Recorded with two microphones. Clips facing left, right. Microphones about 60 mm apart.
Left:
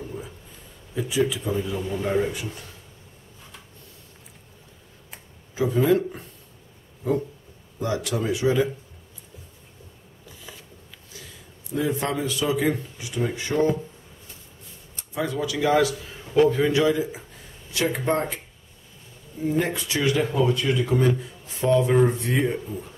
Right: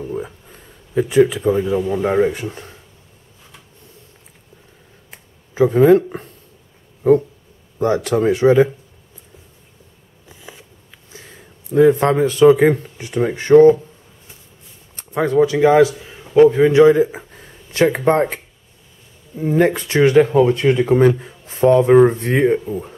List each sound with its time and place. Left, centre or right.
0.1 s a sound: right
2.0 s speech: right
5.5 s speech: right
10.2 s a sound: right
11.7 s speech: right
15.0 s a man's voice: right
16.9 s speech: right
19.6 s speech: right